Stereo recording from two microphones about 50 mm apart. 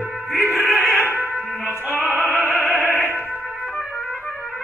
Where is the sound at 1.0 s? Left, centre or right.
Right.